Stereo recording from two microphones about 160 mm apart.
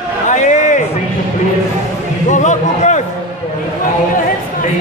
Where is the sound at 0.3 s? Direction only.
50° left (ahead or behind).